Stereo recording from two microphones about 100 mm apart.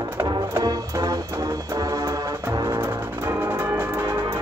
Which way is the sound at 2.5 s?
35° right (ahead or behind).